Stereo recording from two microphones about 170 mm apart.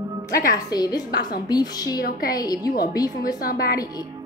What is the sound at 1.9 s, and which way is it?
Speech, 60° left (ahead or behind).